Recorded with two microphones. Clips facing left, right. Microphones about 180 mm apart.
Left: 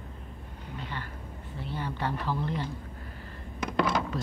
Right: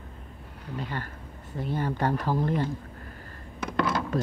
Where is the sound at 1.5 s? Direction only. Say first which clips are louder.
Right 6 dB; 45° right (ahead or behind).